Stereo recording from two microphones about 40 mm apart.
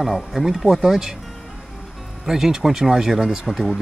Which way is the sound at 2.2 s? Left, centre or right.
Centre.